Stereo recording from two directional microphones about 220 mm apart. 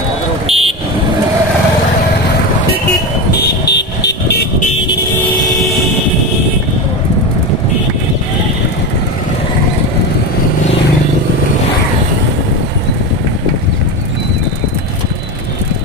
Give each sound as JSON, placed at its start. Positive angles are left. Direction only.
{"t": 0.5, "sound": "vehicle", "side_deg": -25}
{"t": 3.6, "sound": "vehicle", "side_deg": 50}